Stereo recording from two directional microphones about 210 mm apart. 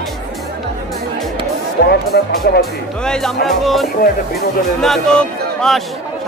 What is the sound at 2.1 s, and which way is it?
Speech, 50° left (ahead or behind).